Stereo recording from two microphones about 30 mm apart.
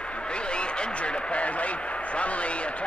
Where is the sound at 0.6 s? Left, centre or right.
Left.